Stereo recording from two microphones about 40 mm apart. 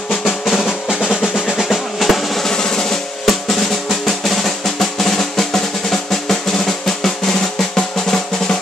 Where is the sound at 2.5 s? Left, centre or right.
Centre.